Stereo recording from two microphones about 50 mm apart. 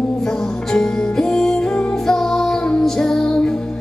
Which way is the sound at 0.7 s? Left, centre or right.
Centre.